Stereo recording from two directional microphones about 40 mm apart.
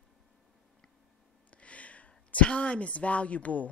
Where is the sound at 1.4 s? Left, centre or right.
Left.